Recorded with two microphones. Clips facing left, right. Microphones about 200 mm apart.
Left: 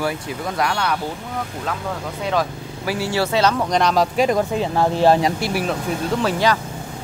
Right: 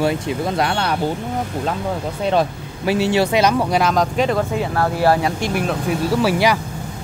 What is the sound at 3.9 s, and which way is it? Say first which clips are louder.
Speech: even; 5° left (ahead or behind).